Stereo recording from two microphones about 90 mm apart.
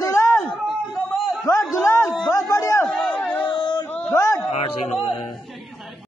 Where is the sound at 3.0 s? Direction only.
15° left (ahead or behind).